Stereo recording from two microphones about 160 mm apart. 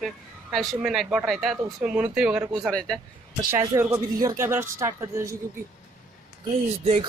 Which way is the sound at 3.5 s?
15° right (ahead or behind).